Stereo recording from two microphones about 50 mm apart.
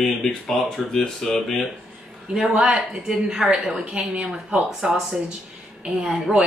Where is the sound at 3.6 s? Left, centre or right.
Centre.